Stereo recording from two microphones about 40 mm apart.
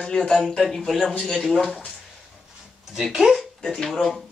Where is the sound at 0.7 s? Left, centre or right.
Centre.